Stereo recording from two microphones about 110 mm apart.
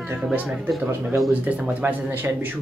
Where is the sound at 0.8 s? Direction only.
20° right (ahead or behind).